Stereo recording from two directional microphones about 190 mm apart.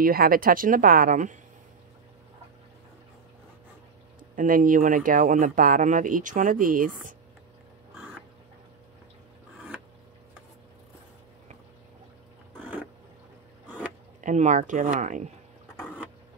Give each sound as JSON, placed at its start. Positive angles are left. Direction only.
{"t": 0.0, "sound": "speech", "side_deg": -50}
{"t": 4.4, "sound": "speech", "side_deg": -45}
{"t": 14.2, "sound": "speech", "side_deg": -40}
{"t": 15.7, "sound": "a sound", "side_deg": 5}